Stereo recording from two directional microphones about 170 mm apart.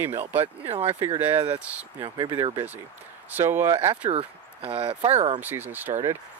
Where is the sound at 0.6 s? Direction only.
35° right (ahead or behind).